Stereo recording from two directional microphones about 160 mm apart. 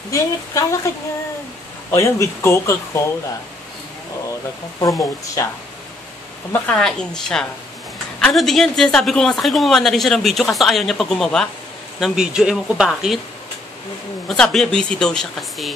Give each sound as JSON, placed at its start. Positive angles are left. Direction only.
{"t": 0.1, "sound": "speech", "side_deg": 20}
{"t": 1.9, "sound": "speech", "side_deg": 15}
{"t": 4.7, "sound": "speech", "side_deg": 20}
{"t": 6.5, "sound": "speech", "side_deg": 5}
{"t": 14.2, "sound": "speech", "side_deg": 5}